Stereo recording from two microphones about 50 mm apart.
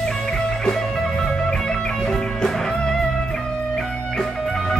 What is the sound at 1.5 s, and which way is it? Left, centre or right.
Music, centre.